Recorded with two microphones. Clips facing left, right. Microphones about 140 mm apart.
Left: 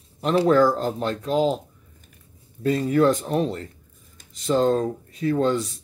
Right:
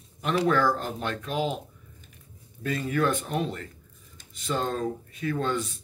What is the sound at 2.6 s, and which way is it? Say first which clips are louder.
Speech: left 7 dB; 35° left (ahead or behind).